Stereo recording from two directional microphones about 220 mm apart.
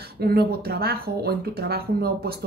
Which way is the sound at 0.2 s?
45° right (ahead or behind).